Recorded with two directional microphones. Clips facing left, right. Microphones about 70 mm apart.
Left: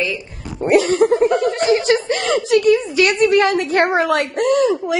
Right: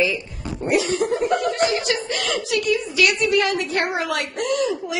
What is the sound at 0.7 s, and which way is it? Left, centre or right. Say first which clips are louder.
Snicker: left 7 dB; left.